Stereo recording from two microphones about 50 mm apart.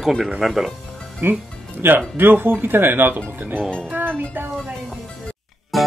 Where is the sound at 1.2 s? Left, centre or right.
Right.